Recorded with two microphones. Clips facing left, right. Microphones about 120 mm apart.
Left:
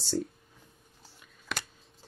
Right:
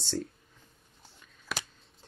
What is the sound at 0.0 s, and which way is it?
Speech, 5° left (ahead or behind).